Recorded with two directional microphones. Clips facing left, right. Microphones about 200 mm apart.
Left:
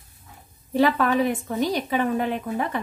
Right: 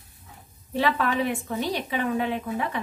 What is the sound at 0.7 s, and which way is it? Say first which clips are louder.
A woman's voice: left 4 dB; 45° left (ahead or behind).